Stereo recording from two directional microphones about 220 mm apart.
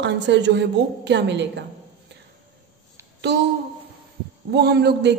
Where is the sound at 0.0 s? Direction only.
55° right (ahead or behind).